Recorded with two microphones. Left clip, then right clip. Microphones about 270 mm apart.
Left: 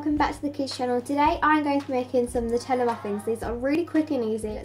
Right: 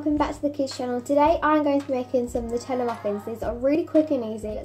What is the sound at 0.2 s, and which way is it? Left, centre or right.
A woman's voice, centre.